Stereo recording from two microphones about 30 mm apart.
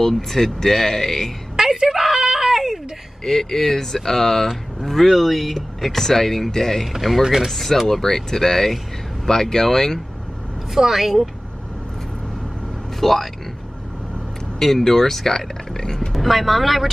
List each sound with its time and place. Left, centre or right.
0.0 s speech: centre
1.9 s screaming: centre
3.3 s speech: centre
6.9 s speech: centre
7.4 s speech: centre
10.7 s a woman's voice: centre
13.0 s speech: centre
14.6 s speech: centre
15.8 s speech: left
16.1 s speech: centre